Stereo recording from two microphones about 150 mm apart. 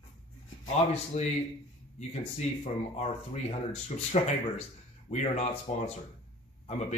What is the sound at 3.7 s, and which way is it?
Speech, 45° left (ahead or behind).